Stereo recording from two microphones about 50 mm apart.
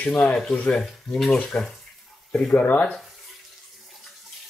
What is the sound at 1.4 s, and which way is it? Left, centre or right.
Speech, centre.